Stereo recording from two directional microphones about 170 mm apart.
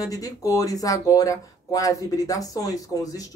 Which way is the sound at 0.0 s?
20° left (ahead or behind).